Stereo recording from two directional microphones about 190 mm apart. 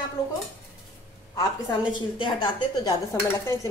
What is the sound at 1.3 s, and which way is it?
A woman's voice, 25° left (ahead or behind).